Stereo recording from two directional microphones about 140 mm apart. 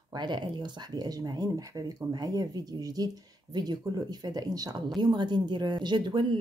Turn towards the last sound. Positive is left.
turn(degrees=-35)  # may be behind; listen again after turning